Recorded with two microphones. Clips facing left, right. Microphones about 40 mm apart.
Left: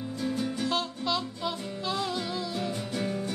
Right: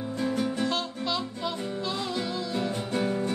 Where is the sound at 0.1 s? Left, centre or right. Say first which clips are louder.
Right 3 dB; right.